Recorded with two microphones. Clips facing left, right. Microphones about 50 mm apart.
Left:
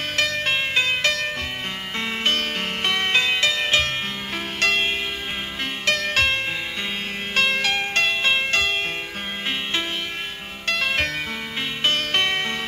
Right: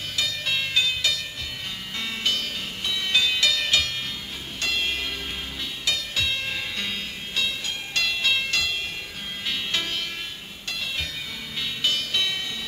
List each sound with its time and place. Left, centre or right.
0.1 s music: left
0.6 s music: left
3.1 s music: left
4.6 s music: left
5.9 s music: left
7.9 s music: left
10.7 s music: left
11.8 s music: left